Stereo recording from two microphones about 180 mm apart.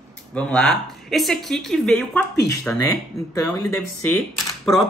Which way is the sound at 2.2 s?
15° left (ahead or behind).